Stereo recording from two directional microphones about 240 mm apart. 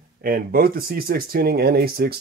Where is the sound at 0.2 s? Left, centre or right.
Right.